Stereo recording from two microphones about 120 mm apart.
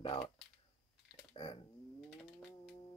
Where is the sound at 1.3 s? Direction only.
45° left (ahead or behind).